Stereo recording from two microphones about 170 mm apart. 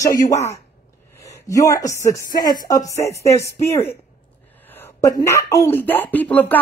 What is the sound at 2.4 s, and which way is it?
Speech, 20° left (ahead or behind).